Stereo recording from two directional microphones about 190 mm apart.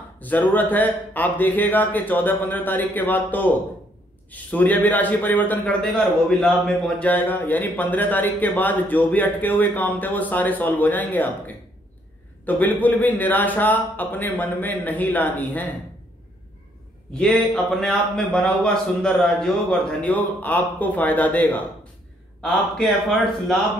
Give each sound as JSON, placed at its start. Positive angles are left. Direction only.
{"t": 0.2, "sound": "a man's voice", "side_deg": 10}
{"t": 17.1, "sound": "a man's voice", "side_deg": 5}